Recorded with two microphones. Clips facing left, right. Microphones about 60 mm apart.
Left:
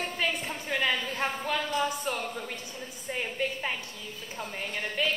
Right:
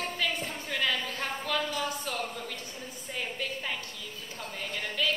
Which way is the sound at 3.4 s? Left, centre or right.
Left.